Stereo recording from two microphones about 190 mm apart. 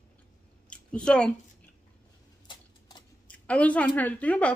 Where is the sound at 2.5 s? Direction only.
25° left (ahead or behind).